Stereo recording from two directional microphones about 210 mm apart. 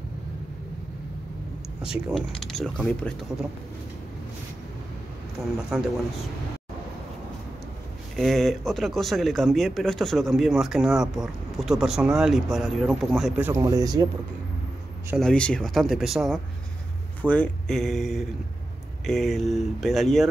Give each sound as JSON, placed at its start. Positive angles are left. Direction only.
{"t": 1.8, "sound": "a man's voice", "side_deg": -5}
{"t": 5.7, "sound": "a man's voice", "side_deg": 0}
{"t": 8.2, "sound": "a man's voice", "side_deg": 0}
{"t": 13.5, "sound": "speech", "side_deg": -15}
{"t": 15.1, "sound": "a man's voice", "side_deg": 5}